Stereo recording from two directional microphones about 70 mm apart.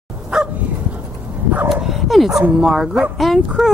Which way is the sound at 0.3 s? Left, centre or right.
Centre.